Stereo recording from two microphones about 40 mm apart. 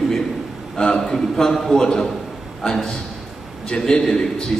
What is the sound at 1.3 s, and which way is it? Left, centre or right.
A man's voice, centre.